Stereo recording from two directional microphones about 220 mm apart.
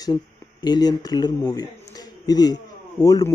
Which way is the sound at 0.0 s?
20° left (ahead or behind).